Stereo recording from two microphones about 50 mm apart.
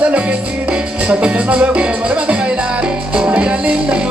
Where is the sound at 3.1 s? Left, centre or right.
Right.